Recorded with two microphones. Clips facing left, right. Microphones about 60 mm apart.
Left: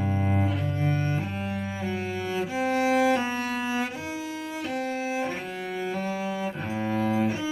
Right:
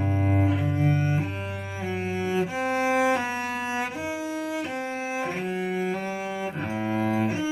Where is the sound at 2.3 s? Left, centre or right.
Centre.